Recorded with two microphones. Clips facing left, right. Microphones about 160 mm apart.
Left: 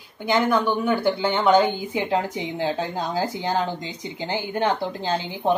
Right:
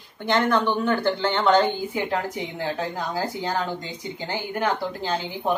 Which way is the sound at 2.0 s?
20° left (ahead or behind).